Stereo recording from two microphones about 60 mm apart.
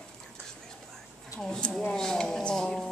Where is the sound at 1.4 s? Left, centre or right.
Centre.